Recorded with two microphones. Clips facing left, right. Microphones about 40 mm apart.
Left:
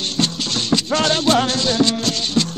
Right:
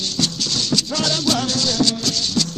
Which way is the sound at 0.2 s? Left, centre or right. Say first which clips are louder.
Left 1 dB; left.